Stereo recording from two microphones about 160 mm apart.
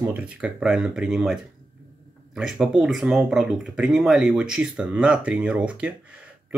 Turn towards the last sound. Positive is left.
turn(degrees=-10)  # may be behind; listen again after turning